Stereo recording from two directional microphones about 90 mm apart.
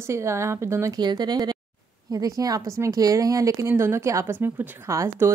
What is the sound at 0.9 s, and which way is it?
A woman's voice, 50° right (ahead or behind).